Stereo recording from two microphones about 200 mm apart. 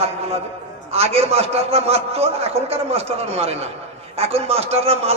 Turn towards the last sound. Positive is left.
turn(degrees=-30)  # may be behind; listen again after turning